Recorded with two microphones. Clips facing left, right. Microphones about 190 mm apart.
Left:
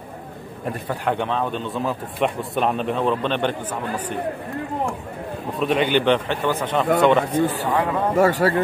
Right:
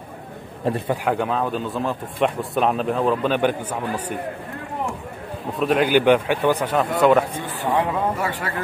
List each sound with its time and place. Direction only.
0.7 s speech: 25° right (ahead or behind)
1.0 s a man's voice: 5° right (ahead or behind)
5.6 s a man's voice: 5° right (ahead or behind)
8.2 s speech: 40° left (ahead or behind)